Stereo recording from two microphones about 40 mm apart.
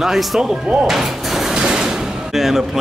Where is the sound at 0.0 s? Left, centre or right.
Centre.